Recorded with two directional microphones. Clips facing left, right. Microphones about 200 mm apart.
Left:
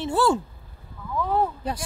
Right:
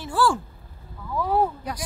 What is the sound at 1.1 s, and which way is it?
Speech, 10° right (ahead or behind).